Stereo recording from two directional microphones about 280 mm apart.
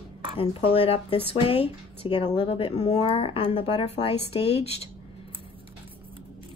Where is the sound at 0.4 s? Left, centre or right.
Left.